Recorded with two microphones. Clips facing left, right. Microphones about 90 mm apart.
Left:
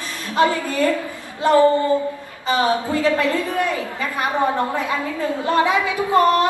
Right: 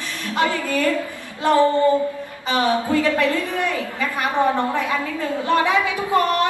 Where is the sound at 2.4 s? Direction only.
20° left (ahead or behind).